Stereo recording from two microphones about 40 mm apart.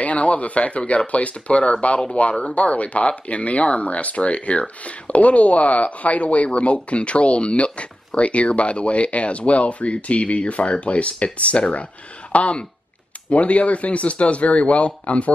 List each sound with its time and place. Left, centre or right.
0.0 s speech: left